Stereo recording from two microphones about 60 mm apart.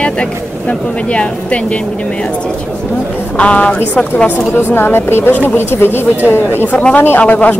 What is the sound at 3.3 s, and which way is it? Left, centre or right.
A woman's voice, left.